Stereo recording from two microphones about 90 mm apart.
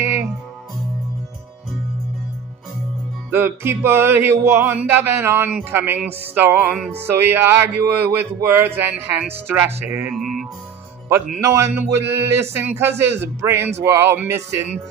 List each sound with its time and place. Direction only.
0.0 s music: 35° right (ahead or behind)
3.3 s speech: 25° right (ahead or behind)
10.1 s music: centre (ahead or behind)
11.4 s a man's voice: 30° right (ahead or behind)